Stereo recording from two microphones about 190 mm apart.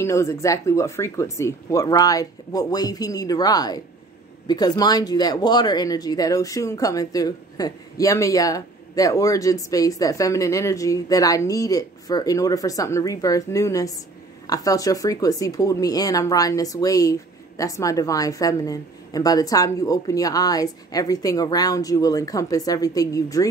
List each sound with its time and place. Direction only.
0.0 s speech: 15° left (ahead or behind)